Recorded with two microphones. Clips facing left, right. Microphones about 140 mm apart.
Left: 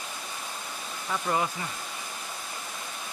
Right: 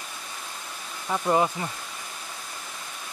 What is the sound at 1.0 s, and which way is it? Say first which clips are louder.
Speech: right 5 dB; 25° right (ahead or behind).